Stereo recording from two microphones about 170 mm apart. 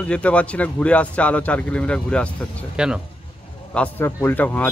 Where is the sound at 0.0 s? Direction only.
5° left (ahead or behind).